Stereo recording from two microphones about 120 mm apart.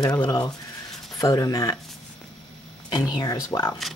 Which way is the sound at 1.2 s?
30° left (ahead or behind).